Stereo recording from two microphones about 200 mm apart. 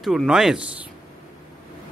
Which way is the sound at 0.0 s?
Centre (ahead or behind).